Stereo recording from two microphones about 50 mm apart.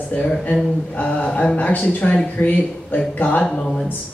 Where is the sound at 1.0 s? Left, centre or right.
Left.